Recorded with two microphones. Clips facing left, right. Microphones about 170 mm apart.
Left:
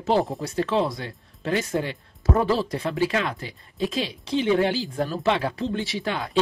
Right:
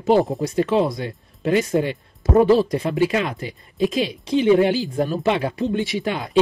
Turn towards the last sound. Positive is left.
turn(degrees=-15)  # may be behind; listen again after turning